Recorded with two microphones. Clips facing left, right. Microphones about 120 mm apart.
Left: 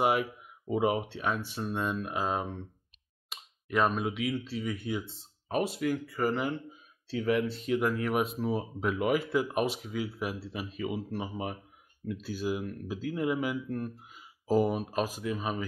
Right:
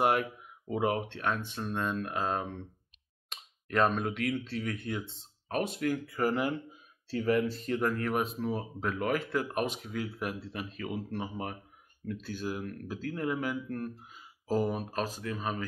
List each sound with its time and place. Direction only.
0.0 s speech: 5° left (ahead or behind)